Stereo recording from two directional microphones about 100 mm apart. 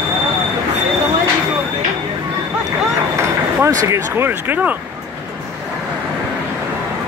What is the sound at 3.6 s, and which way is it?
Speech, 30° right (ahead or behind).